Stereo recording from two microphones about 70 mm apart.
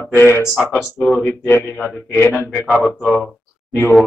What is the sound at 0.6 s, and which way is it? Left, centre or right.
Speech, centre.